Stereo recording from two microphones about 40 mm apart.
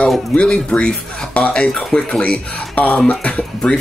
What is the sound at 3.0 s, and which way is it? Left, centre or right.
Speech, left.